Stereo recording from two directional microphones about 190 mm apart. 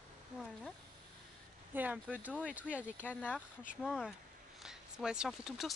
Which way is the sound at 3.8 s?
5° right (ahead or behind).